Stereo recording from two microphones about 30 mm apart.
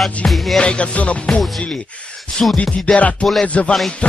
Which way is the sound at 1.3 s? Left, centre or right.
Centre.